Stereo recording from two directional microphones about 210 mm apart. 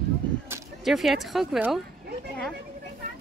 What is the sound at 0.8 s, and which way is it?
Speech, centre (ahead or behind).